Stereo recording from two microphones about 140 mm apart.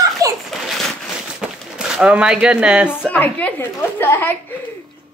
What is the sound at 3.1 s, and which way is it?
A woman's voice, 10° left (ahead or behind).